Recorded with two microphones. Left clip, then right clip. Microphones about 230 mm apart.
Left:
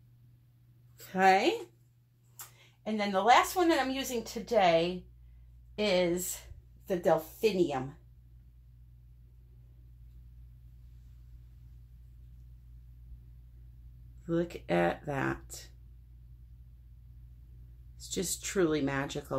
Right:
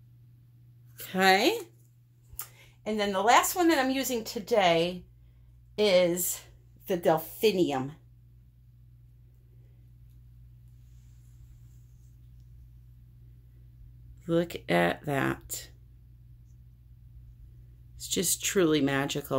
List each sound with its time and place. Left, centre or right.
1.0 s speech: right
2.3 s a woman's voice: right
14.2 s speech: right
17.9 s speech: right